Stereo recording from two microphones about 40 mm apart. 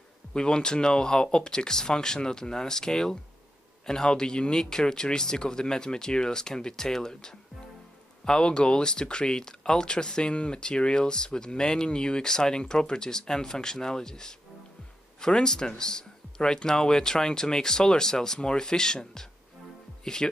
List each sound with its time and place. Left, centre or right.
0.3 s speech: centre